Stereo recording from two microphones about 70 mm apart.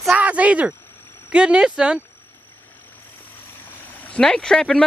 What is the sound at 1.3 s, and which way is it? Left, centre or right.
Speech, centre.